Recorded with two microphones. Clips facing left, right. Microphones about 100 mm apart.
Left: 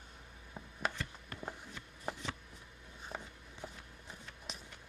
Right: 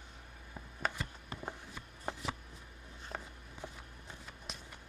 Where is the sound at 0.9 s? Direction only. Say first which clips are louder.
Right 1 dB; 15° right (ahead or behind).